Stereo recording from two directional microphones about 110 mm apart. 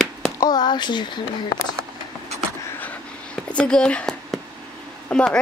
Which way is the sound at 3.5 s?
10° left (ahead or behind).